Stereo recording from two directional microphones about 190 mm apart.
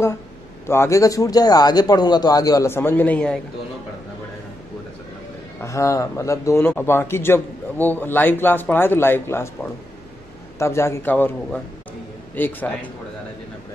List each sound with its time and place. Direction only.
0.7 s speech: 15° left (ahead or behind)
5.6 s speech: 15° left (ahead or behind)